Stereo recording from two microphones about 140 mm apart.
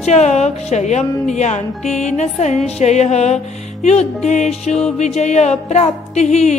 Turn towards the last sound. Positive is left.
turn(degrees=55)  # may be behind; listen again after turning